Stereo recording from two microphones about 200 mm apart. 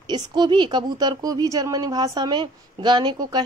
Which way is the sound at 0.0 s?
20° right (ahead or behind).